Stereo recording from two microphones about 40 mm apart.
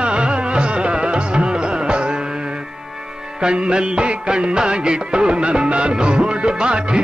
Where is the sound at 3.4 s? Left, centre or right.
Right.